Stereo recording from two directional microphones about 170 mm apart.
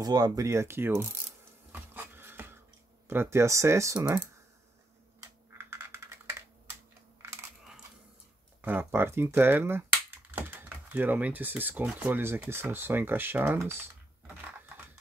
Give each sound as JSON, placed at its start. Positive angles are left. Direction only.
{"t": 0.0, "sound": "speech", "side_deg": -20}
{"t": 1.7, "sound": "a sound", "side_deg": -10}
{"t": 3.1, "sound": "speech", "side_deg": -15}
{"t": 5.6, "sound": "computer keyboard", "side_deg": -15}
{"t": 8.5, "sound": "speech", "side_deg": -10}
{"t": 13.7, "sound": "typing", "side_deg": -15}